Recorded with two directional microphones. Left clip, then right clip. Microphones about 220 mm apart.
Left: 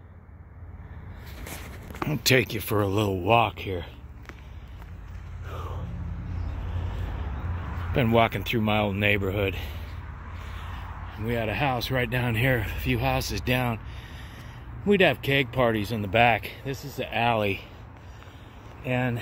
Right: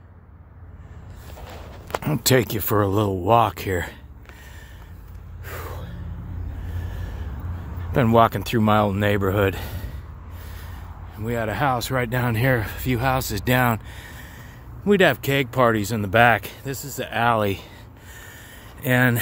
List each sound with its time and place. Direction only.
2.0 s speech: 15° right (ahead or behind)
7.9 s speech: 15° right (ahead or behind)
11.1 s speech: 5° right (ahead or behind)
14.9 s speech: 10° right (ahead or behind)
16.7 s speech: 30° right (ahead or behind)
17.0 s speech: 10° right (ahead or behind)
18.8 s speech: 30° right (ahead or behind)